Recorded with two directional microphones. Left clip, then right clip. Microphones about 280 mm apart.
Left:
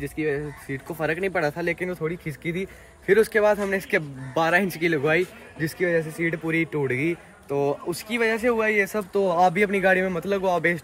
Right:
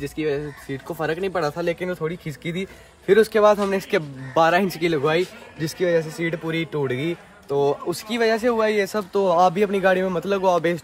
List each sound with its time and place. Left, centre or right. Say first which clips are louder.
0.0 s speech: right 2 dB; centre